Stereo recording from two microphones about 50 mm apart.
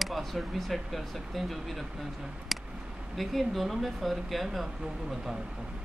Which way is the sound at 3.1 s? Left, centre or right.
Centre.